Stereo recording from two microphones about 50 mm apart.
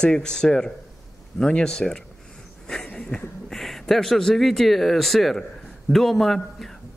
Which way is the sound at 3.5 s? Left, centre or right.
Centre.